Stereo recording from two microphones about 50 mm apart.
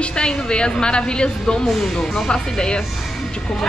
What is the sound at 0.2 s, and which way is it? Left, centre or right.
A woman's voice, centre.